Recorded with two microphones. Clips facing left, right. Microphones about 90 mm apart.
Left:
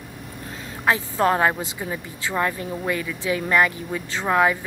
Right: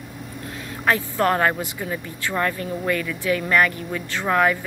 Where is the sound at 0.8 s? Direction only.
20° left (ahead or behind).